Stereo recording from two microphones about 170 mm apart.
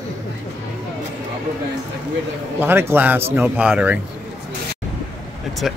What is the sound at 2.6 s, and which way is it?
A man's voice, 15° right (ahead or behind).